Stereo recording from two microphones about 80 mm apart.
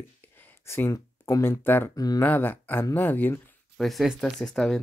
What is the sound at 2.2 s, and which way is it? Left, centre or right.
Speech, left.